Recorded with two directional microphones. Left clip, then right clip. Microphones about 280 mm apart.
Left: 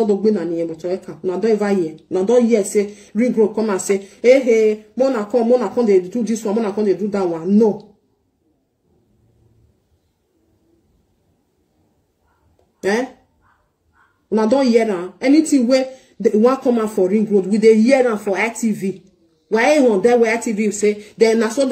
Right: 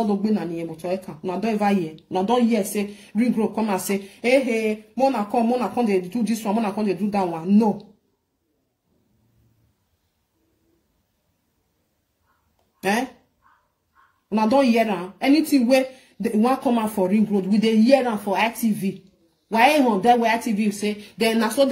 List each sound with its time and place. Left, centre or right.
0.2 s a woman's voice: centre
14.3 s a woman's voice: centre